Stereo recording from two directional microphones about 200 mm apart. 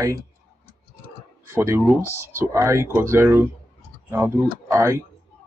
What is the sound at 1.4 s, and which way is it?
Speech, 15° right (ahead or behind).